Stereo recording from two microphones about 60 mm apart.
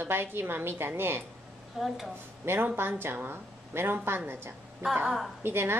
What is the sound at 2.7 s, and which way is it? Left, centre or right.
A woman's voice, right.